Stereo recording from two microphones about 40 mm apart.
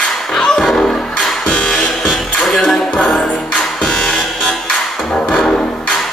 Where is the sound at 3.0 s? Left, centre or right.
Left.